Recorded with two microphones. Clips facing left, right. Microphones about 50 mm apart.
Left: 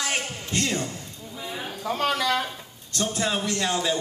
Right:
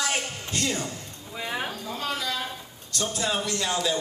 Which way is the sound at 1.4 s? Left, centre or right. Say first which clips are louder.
Right 4 dB; right.